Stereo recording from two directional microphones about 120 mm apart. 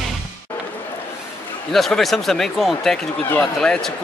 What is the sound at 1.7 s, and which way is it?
Speech, centre (ahead or behind).